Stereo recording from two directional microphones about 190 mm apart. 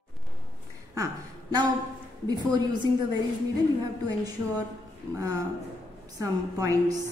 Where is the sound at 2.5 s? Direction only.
20° right (ahead or behind).